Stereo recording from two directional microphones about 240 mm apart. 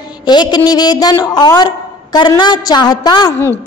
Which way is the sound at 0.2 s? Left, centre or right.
Centre.